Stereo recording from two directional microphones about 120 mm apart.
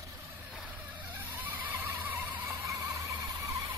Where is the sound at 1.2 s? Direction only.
15° right (ahead or behind).